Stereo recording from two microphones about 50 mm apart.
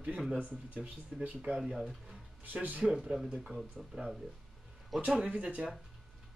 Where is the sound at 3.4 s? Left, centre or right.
Centre.